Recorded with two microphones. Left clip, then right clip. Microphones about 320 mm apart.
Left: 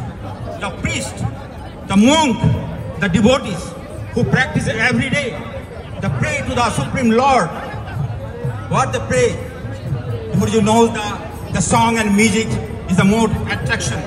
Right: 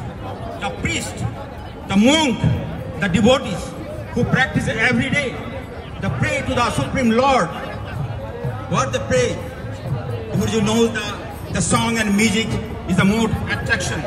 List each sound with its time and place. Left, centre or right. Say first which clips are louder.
0.6 s music: left 1 dB; centre
1.9 s a man's voice: left 3 dB; centre
8.6 s a man's voice: left 3 dB; centre
10.4 s a man's voice: left 5 dB; centre